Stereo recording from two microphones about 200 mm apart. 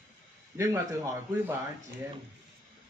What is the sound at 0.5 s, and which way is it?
A man's voice, 15° right (ahead or behind).